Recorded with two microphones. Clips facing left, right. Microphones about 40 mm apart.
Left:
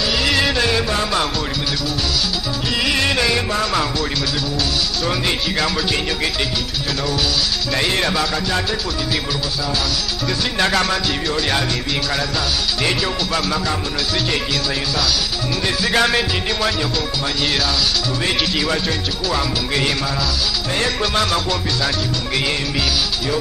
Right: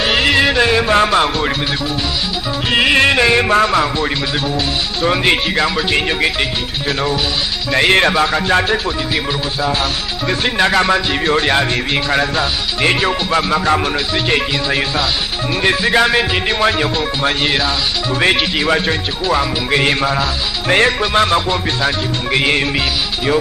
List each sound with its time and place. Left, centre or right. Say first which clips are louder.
0.0 s music: right 5 dB; right
0.3 s music: right 5 dB; right
0.9 s speech: right 7 dB; right
2.7 s speech: right 7 dB; right
3.7 s music: right 5 dB; right
7.8 s speech: right 8 dB; right
10.6 s music: right 5 dB; centre
11.2 s speech: right 8 dB; right
15.9 s music: right 2 dB; centre
16.4 s speech: right 5 dB; right
21.0 s music: right 5 dB; right